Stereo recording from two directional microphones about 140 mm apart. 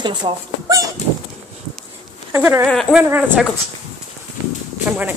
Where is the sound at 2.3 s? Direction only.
20° right (ahead or behind).